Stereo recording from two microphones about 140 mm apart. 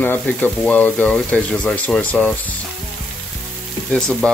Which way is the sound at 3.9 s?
5° left (ahead or behind).